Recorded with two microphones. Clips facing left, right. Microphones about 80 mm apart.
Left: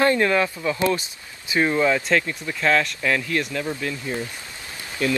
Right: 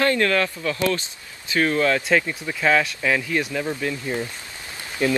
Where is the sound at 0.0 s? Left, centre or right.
Centre.